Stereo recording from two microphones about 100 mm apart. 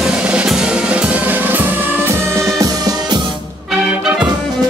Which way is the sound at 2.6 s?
40° right (ahead or behind).